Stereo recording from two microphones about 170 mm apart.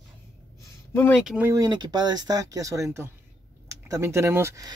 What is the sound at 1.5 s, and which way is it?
Speech, 25° right (ahead or behind).